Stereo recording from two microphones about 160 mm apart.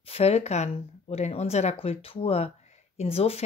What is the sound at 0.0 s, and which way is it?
Speech, 40° left (ahead or behind).